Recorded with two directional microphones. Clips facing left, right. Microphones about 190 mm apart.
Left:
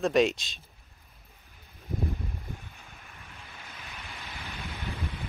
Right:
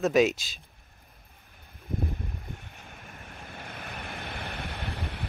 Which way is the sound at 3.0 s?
50° right (ahead or behind).